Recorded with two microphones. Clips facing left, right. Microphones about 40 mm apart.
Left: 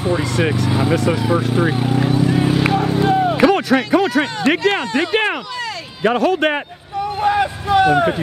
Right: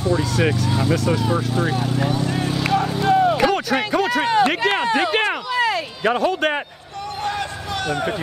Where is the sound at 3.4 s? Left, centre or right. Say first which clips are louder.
Left 5 dB; centre.